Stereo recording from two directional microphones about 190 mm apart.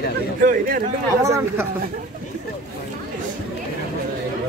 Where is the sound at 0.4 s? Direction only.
50° right (ahead or behind).